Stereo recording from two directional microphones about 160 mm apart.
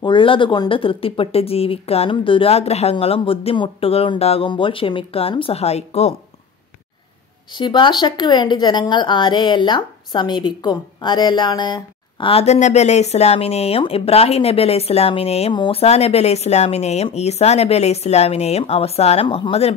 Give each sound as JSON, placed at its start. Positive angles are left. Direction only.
{"t": 0.0, "sound": "a woman's voice", "side_deg": 30}
{"t": 7.5, "sound": "a woman's voice", "side_deg": 30}